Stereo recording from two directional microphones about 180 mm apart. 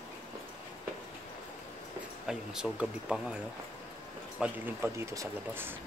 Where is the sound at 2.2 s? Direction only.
5° right (ahead or behind).